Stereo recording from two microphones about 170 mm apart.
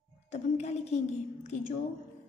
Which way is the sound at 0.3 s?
40° left (ahead or behind).